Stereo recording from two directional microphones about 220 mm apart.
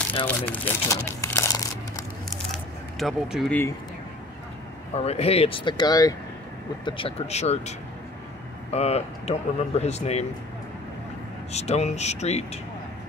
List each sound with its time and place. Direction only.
0.5 s crumpling: 10° left (ahead or behind)
2.5 s a sound: centre (ahead or behind)
4.9 s speech: 30° left (ahead or behind)
8.7 s speech: 30° left (ahead or behind)
11.5 s speech: 30° left (ahead or behind)